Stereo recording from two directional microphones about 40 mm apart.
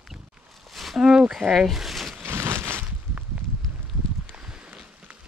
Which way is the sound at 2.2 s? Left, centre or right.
Right.